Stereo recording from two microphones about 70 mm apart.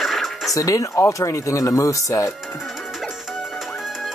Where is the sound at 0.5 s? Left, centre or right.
Left.